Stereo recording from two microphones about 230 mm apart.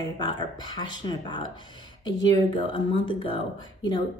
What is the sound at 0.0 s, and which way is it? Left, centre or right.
A woman's voice, centre.